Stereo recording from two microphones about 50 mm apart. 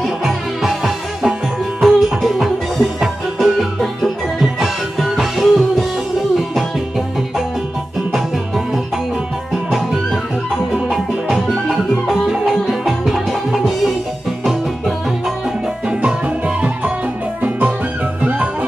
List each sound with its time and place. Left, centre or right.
0.0 s music: centre
10.7 s music: centre
12.8 s music: centre
16.0 s music: right